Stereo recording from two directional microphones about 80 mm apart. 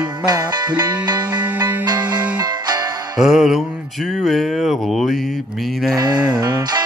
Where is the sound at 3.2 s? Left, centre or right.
Centre.